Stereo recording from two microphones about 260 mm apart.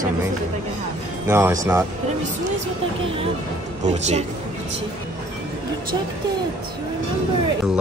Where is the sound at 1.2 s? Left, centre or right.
Centre.